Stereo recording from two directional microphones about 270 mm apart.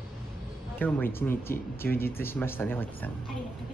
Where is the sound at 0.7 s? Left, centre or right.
Centre.